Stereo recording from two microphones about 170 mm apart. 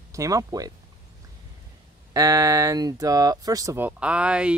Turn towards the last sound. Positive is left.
turn(degrees=-5)  # may be behind; listen again after turning